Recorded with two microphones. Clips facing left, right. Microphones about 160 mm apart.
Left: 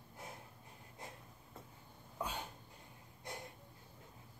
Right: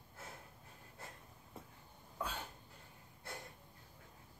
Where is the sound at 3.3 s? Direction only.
15° left (ahead or behind).